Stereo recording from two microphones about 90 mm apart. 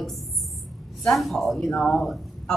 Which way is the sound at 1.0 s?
Centre (ahead or behind).